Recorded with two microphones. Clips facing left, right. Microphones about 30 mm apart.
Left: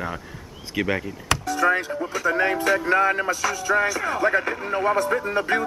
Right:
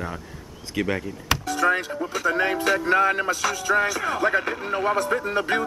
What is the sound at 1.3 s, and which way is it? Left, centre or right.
Music, centre.